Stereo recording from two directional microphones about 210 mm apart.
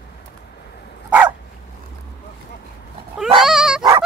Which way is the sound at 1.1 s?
10° right (ahead or behind).